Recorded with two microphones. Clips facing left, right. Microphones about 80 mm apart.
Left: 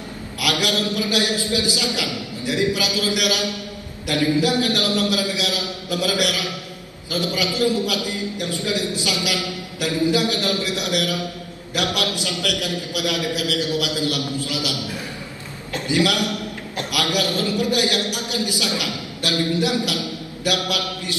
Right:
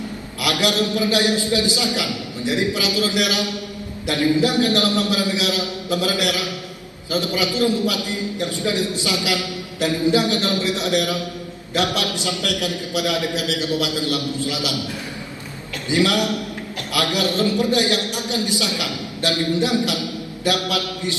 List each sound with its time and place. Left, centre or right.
0.5 s a man's voice: right
15.9 s a man's voice: right